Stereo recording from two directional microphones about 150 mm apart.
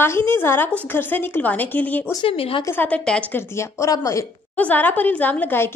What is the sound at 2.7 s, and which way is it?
Speech, 10° left (ahead or behind).